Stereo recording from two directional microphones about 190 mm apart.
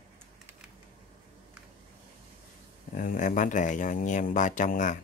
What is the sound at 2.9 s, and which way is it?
Speech, 45° left (ahead or behind).